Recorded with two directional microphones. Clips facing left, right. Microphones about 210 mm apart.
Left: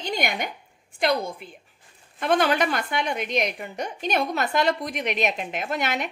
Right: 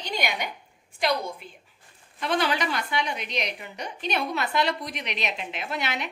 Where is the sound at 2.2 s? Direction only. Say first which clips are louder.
Left 4 dB; 50° left (ahead or behind).